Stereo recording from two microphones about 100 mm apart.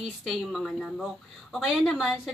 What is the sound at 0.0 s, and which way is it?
A woman's voice, centre (ahead or behind).